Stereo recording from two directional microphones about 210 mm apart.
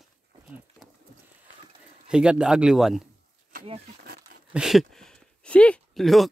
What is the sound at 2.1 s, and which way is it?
Speech, 5° right (ahead or behind).